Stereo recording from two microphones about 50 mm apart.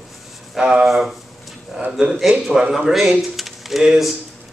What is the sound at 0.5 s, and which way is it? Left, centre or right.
Speech, centre.